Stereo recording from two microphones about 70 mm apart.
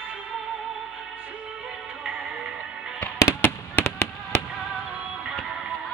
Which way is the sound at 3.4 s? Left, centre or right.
Left.